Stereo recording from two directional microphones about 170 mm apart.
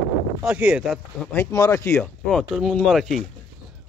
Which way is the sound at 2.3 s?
5° left (ahead or behind).